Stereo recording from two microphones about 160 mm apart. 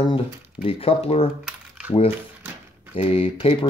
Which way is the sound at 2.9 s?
35° left (ahead or behind).